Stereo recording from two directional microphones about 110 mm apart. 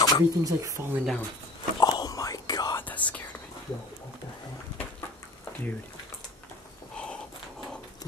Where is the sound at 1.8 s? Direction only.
40° left (ahead or behind).